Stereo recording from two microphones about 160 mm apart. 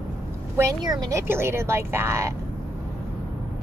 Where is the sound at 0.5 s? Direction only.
25° right (ahead or behind).